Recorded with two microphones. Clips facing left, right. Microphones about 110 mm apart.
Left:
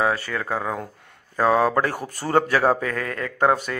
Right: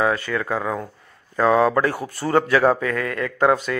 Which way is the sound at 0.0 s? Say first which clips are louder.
Right 2 dB; 35° left (ahead or behind).